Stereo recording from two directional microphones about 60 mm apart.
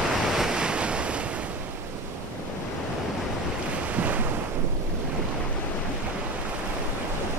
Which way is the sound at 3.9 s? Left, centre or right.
Right.